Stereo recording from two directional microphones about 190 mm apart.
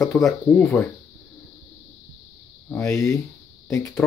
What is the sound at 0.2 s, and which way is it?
Speech, 10° left (ahead or behind).